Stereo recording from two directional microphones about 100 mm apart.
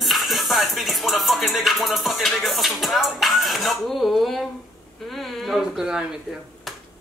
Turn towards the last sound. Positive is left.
turn(degrees=0)  # may be behind; listen again after turning